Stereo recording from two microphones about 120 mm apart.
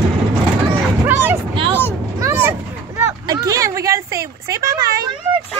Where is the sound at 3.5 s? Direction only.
25° right (ahead or behind).